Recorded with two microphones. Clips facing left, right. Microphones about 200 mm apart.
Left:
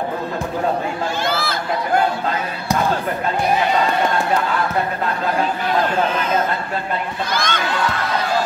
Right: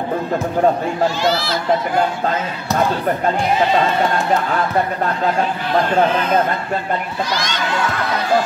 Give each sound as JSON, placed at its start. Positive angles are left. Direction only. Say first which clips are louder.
{"t": 1.2, "sound": "speech", "louder": "right 4 dB", "side_deg": 55}
{"t": 7.3, "sound": "speech", "louder": "left 1 dB", "side_deg": 55}